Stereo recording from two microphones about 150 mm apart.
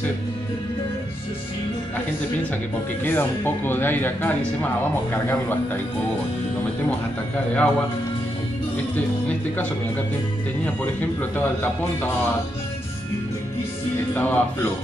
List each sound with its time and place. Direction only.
3.0 s speech: 15° left (ahead or behind)
6.9 s a man's voice: 10° left (ahead or behind)
8.9 s speech: 10° left (ahead or behind)
14.1 s speech: 10° left (ahead or behind)